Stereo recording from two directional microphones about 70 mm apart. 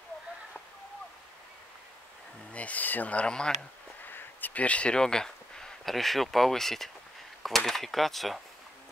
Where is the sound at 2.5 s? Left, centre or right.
Left.